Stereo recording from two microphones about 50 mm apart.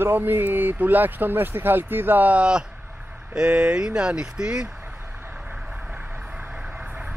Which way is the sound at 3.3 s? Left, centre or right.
Right.